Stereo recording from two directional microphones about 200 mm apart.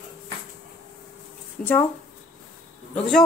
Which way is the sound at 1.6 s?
40° left (ahead or behind).